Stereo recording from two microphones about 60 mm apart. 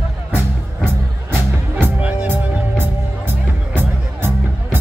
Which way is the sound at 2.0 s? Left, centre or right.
Right.